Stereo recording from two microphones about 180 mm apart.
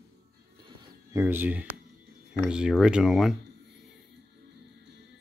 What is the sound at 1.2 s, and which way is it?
Speech, 10° right (ahead or behind).